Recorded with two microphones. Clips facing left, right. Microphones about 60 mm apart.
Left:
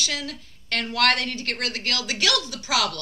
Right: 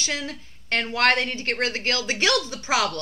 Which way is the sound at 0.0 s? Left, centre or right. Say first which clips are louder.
Right 1 dB; right.